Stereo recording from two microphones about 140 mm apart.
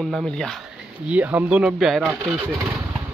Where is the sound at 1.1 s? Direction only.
10° right (ahead or behind).